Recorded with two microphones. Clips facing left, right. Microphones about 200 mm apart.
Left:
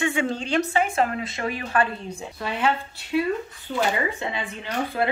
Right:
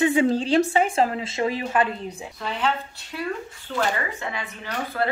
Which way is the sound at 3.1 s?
15° left (ahead or behind).